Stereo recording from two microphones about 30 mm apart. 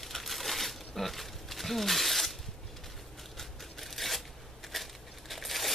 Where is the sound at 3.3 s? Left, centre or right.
Centre.